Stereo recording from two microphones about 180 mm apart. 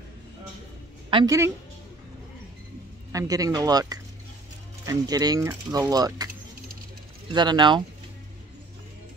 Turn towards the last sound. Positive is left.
turn(degrees=-25)  # may be behind; listen again after turning